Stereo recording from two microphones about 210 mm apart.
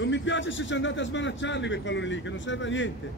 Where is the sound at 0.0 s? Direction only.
60° left (ahead or behind).